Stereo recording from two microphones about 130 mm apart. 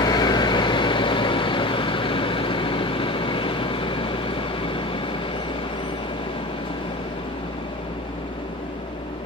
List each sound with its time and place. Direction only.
0.0 s vehicle: 30° left (ahead or behind)